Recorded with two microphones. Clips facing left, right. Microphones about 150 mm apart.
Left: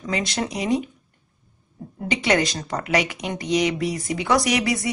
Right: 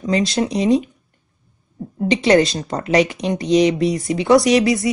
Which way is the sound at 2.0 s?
30° right (ahead or behind).